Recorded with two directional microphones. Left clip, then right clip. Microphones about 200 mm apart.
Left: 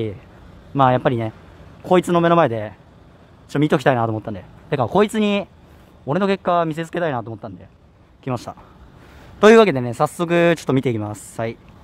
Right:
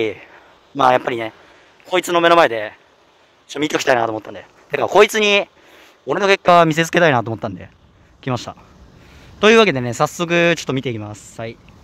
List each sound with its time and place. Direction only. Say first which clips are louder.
0.7 s speech: right 2 dB; 15° right (ahead or behind)
8.2 s speech: right 3 dB; 5° right (ahead or behind)
9.6 s speech: right 1 dB; centre (ahead or behind); by 11.5 s 20° left (ahead or behind)